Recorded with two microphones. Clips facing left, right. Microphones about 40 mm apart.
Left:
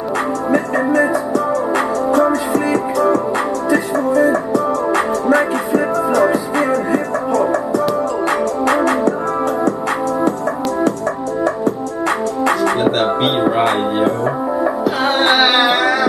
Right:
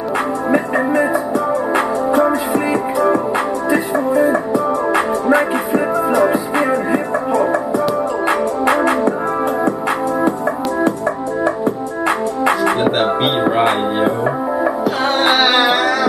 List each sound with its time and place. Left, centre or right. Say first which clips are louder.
0.5 s music: even; centre
12.4 s music: even; centre
15.1 s music: even; centre